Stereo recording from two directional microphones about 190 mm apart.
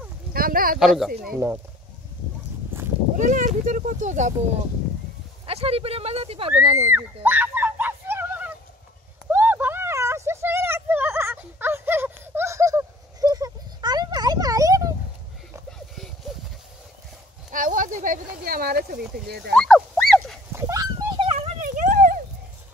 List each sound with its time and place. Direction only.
0.3 s a sound: 50° right (ahead or behind)
0.7 s speech: centre (ahead or behind)
3.2 s speech: 40° right (ahead or behind)
5.5 s speech: 30° right (ahead or behind)
7.2 s a sound: 10° right (ahead or behind)
17.5 s speech: 45° right (ahead or behind)
19.5 s dog: 5° left (ahead or behind)
20.5 s dog: 15° right (ahead or behind)
21.5 s a sound: 40° right (ahead or behind)